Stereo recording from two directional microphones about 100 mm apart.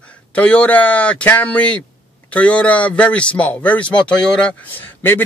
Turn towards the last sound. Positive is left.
turn(degrees=20)  # may be behind; listen again after turning